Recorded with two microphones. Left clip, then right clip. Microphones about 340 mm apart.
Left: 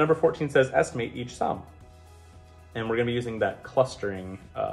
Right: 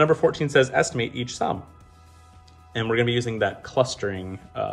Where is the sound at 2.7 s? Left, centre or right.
Right.